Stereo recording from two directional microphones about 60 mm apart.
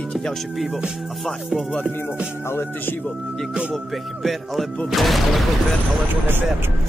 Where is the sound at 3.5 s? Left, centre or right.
Centre.